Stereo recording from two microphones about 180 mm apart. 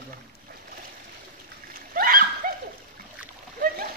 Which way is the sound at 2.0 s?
50° right (ahead or behind).